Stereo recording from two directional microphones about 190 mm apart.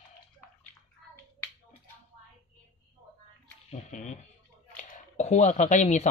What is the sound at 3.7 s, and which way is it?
Speech, 40° left (ahead or behind).